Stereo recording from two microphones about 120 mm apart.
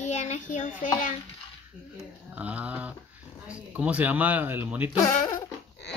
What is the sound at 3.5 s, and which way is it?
Speech, 10° right (ahead or behind).